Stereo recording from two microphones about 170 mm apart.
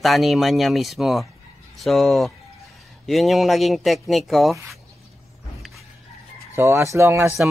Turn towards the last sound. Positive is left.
turn(degrees=-15)  # may be behind; listen again after turning